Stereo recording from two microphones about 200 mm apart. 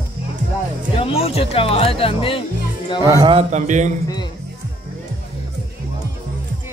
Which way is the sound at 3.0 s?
20° right (ahead or behind).